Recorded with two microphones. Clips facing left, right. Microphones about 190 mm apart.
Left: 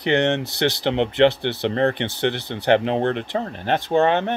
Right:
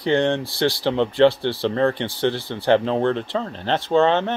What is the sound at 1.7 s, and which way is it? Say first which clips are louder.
Speech: left 1 dB; 65° left (ahead or behind).